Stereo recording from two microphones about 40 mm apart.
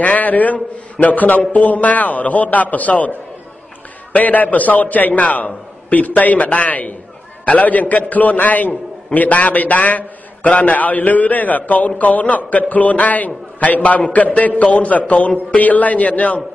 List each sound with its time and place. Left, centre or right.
0.0 s a man's voice: left